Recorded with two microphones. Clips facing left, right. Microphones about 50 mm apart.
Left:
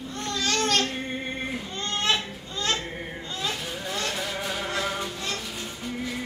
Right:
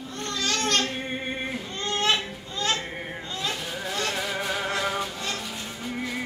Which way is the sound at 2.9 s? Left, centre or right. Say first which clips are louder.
Right 1 dB; centre.